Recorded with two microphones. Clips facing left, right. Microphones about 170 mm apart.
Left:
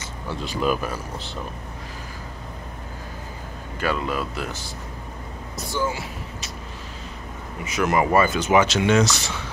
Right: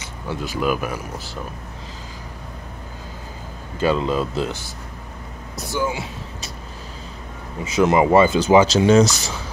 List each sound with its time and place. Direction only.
0.3 s speech: 5° right (ahead or behind)
3.8 s speech: 25° right (ahead or behind)
5.7 s speech: 15° right (ahead or behind)
7.6 s speech: 25° right (ahead or behind)